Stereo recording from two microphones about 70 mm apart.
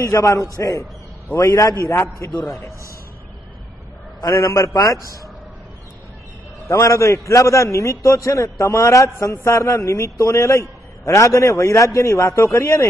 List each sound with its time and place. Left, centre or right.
0.0 s a man's voice: left
4.3 s a man's voice: left
6.7 s a man's voice: left